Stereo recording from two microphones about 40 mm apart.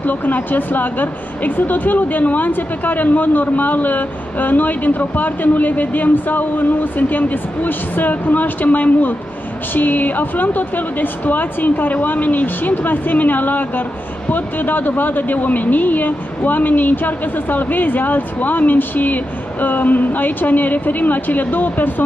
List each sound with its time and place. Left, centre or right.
0.0 s speech: left